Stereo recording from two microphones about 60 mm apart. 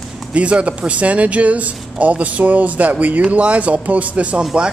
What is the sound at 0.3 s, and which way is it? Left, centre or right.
Speech, centre.